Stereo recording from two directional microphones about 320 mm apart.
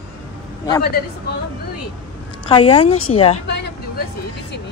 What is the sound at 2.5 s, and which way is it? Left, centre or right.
Speech, centre.